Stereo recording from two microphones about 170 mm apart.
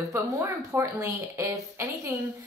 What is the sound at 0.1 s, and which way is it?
A woman's voice, 15° right (ahead or behind).